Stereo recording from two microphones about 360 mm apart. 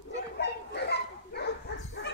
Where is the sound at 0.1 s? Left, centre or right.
Left.